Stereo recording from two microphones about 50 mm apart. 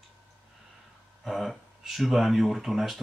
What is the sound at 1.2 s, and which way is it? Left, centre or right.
Speech, centre.